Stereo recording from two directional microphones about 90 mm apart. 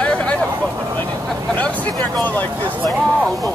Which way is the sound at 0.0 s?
15° left (ahead or behind).